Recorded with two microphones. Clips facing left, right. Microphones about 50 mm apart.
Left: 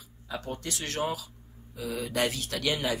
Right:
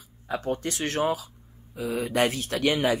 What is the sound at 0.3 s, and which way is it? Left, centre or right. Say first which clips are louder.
Speech: right 7 dB; right.